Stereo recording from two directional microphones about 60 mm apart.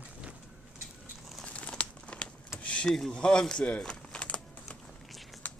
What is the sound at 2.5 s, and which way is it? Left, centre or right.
Vehicle, left.